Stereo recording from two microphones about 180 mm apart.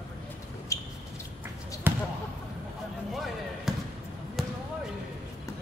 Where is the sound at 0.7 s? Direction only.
15° left (ahead or behind).